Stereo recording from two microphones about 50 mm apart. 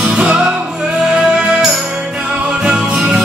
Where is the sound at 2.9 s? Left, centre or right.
Centre.